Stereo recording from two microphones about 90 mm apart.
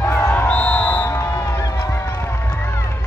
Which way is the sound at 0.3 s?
15° left (ahead or behind).